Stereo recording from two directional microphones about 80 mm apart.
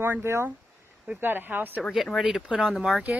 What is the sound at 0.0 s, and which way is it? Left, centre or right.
Speech, right.